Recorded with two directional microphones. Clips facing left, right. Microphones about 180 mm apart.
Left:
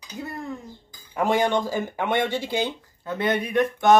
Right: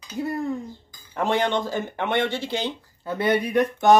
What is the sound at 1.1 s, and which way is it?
Speech, 10° left (ahead or behind).